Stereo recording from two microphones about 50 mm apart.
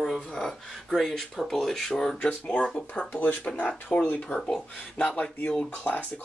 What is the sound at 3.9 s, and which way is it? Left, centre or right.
Speech, left.